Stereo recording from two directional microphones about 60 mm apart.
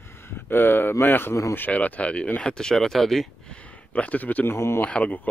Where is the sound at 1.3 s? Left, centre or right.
Left.